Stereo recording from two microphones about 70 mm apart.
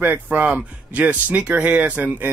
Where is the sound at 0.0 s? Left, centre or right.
Right.